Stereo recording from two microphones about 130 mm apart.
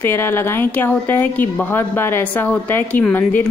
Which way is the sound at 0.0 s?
20° left (ahead or behind).